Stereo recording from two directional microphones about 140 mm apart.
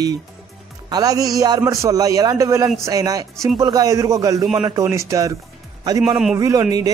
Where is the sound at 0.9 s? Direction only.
25° right (ahead or behind).